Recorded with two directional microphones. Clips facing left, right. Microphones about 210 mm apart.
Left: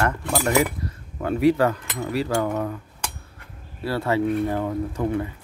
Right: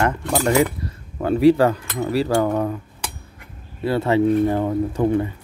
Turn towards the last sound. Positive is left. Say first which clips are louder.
# right 5 dB
turn(degrees=-30)  # may be behind; listen again after turning